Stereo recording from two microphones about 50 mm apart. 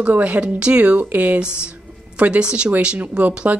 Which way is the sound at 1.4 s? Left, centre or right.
Right.